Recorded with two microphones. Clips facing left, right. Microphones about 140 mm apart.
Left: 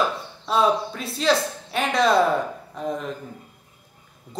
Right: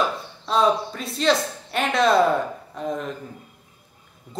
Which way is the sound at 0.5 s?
5° left (ahead or behind).